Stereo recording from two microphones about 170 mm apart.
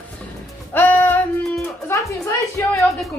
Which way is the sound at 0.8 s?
10° left (ahead or behind).